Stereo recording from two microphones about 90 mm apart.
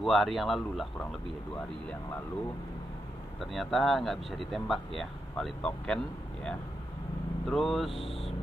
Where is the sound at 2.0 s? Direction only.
25° left (ahead or behind).